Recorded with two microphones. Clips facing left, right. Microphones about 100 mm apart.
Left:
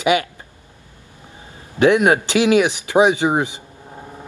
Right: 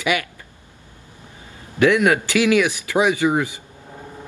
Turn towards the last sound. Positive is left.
turn(degrees=20)  # may be behind; listen again after turning